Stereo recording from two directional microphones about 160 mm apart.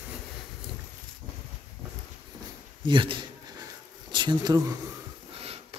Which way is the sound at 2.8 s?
30° right (ahead or behind).